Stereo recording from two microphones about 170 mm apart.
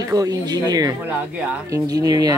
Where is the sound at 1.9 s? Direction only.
20° right (ahead or behind).